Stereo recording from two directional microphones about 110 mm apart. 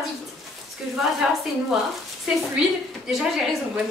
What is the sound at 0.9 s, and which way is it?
A woman's voice, 5° right (ahead or behind).